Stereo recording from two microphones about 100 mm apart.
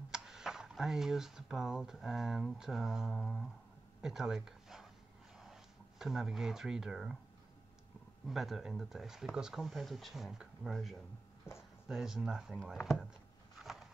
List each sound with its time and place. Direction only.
0.1 s speech: 5° right (ahead or behind)
4.0 s a sound: 5° right (ahead or behind)
5.4 s speech: 5° right (ahead or behind)
8.3 s speech: centre (ahead or behind)
11.5 s a sound: 25° left (ahead or behind)
11.9 s speech: 5° right (ahead or behind)